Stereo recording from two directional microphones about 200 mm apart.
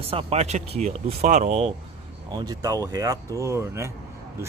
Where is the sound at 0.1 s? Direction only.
30° right (ahead or behind).